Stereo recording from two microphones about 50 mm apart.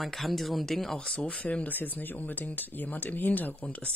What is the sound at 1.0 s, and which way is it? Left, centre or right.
Speech, left.